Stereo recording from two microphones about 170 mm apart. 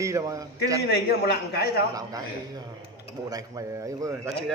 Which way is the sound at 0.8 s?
70° left (ahead or behind).